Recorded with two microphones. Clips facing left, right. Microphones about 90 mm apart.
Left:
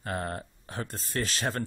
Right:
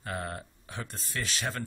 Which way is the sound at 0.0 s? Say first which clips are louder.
Left 3 dB; 40° left (ahead or behind).